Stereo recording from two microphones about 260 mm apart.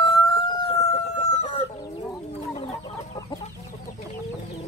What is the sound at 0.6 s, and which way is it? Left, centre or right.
Chicken, left.